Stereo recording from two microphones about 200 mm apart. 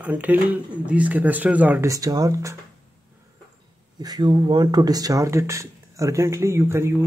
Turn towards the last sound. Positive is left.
turn(degrees=-15)  # may be behind; listen again after turning